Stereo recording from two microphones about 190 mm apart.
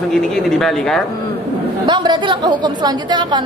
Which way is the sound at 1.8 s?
25° right (ahead or behind).